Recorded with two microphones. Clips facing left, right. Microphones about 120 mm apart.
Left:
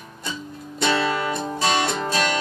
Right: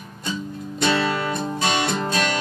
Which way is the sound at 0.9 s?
20° left (ahead or behind).